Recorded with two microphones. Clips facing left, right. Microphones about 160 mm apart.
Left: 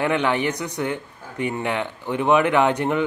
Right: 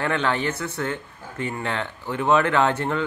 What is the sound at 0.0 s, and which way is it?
Speech, 15° left (ahead or behind).